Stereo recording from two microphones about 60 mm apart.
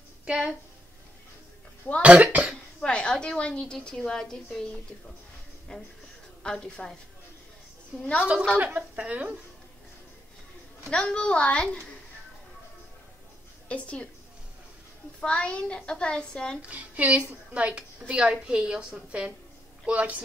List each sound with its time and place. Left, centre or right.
0.2 s speech: centre
2.0 s speech: right
2.8 s a woman's voice: centre
5.7 s a woman's voice: centre
8.0 s a woman's voice: left
8.5 s speech: right
10.9 s a woman's voice: centre
13.7 s a woman's voice: left
15.1 s a woman's voice: centre
16.6 s a woman's voice: right